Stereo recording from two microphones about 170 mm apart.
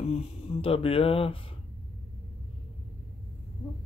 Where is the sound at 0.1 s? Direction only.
35° left (ahead or behind).